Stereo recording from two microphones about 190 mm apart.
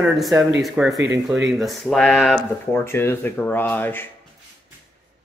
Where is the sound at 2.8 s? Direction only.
10° left (ahead or behind).